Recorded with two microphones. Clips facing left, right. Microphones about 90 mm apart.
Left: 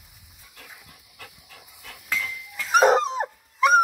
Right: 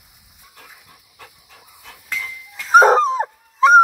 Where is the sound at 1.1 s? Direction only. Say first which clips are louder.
Right 1 dB; 25° right (ahead or behind).